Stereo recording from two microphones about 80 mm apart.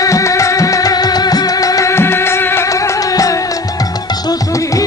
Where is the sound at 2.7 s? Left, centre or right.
Left.